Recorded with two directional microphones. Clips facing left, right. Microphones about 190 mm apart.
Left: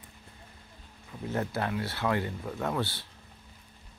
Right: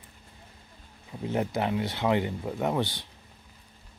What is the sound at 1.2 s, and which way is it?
Speech, 15° right (ahead or behind).